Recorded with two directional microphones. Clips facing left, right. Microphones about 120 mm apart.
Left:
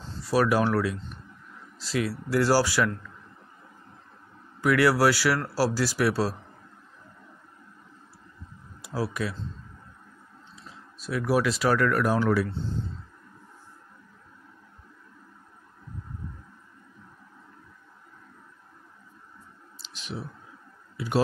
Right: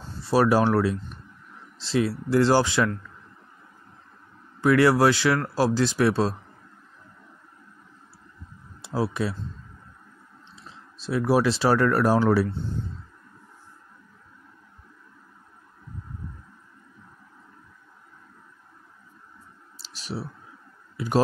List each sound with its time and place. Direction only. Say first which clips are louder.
0.2 s speech: right 3 dB; 30° right (ahead or behind)
4.6 s speech: right 3 dB; 25° right (ahead or behind)
8.8 s speech: right 3 dB; 25° right (ahead or behind)
11.0 s speech: right 3 dB; 25° right (ahead or behind)
20.0 s clicking: right 3 dB; 35° right (ahead or behind)